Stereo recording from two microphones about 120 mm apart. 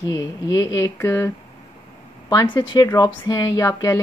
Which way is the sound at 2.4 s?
40° left (ahead or behind).